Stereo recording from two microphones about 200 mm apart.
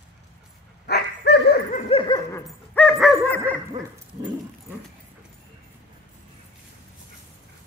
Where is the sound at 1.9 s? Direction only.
25° left (ahead or behind).